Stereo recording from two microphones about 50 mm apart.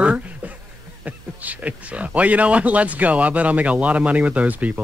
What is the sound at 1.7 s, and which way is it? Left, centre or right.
Speech, right.